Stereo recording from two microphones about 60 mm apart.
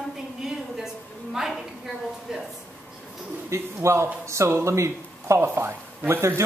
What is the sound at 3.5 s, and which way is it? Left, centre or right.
A man's voice, right.